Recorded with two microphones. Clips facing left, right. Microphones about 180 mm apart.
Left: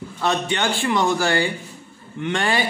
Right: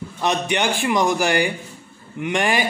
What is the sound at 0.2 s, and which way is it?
Speech, 15° right (ahead or behind).